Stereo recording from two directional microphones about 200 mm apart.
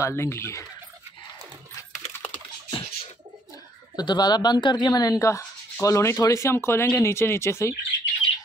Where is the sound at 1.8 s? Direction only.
10° left (ahead or behind).